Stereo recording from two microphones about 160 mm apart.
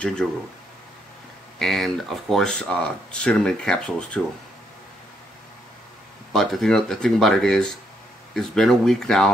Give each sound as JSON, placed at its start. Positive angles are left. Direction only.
{"t": 0.0, "sound": "speech", "side_deg": 5}
{"t": 1.6, "sound": "speech", "side_deg": 0}
{"t": 6.3, "sound": "speech", "side_deg": 0}